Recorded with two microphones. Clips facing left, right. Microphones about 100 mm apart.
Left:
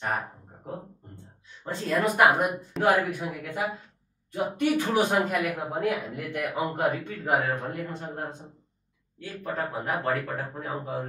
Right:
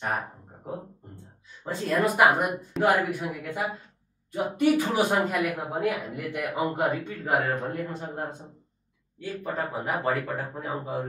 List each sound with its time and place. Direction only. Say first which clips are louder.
0.0 s a woman's voice: even; centre (ahead or behind)
3.0 s a man's voice: even; 10° right (ahead or behind)